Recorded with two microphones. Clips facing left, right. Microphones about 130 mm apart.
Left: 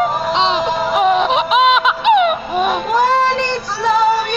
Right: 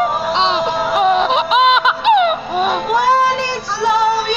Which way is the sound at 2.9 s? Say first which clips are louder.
Right 1 dB; 10° right (ahead or behind).